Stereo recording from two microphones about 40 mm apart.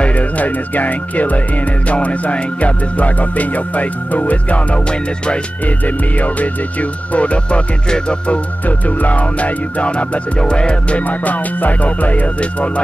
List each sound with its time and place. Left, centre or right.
0.1 s speech: left
1.9 s music: left
5.9 s music: left
7.9 s music: left
8.6 s music: left
11.1 s music: left